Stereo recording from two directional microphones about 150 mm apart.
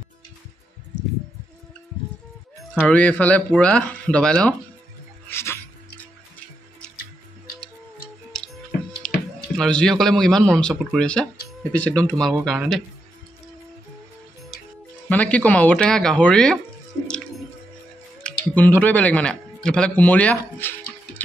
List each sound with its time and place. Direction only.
2.8 s speech: 10° left (ahead or behind)
5.3 s music: 15° left (ahead or behind)
8.3 s music: 5° left (ahead or behind)
9.6 s speech: 5° left (ahead or behind)
12.1 s speech: centre (ahead or behind)
15.0 s speech: 10° left (ahead or behind)
18.2 s speech: 10° left (ahead or behind)